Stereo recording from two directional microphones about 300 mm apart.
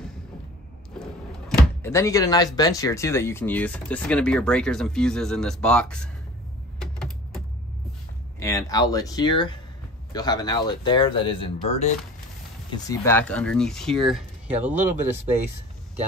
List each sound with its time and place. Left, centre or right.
1.8 s speech: centre
6.8 s a sound: centre
8.4 s speech: centre